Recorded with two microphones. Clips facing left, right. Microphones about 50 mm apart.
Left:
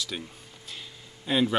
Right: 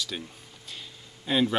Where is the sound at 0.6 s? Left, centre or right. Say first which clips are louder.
Even; centre.